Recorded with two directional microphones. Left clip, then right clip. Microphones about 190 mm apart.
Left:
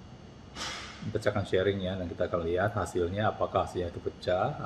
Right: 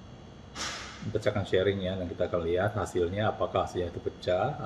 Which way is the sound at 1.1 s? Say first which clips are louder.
Right 1 dB; 5° left (ahead or behind).